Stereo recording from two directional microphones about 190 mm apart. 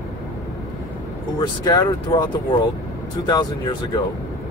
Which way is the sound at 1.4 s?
20° left (ahead or behind).